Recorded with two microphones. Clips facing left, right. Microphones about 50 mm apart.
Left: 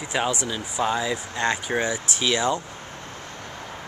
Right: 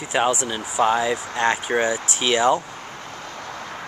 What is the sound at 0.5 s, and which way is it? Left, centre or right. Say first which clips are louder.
Speech: right 5 dB; right.